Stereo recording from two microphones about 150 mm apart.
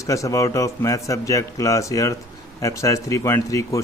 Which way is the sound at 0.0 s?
20° left (ahead or behind).